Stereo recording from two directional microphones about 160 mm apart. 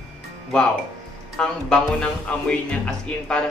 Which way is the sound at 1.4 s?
5° left (ahead or behind).